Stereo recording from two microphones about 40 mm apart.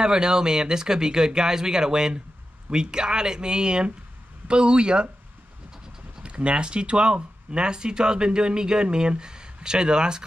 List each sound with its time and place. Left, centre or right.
0.0 s speech: centre
6.2 s speech: right